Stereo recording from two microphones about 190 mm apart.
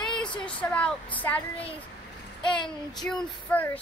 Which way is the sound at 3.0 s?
5° left (ahead or behind).